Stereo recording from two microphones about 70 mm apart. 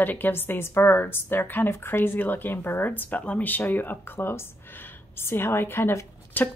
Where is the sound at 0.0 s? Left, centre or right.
Left.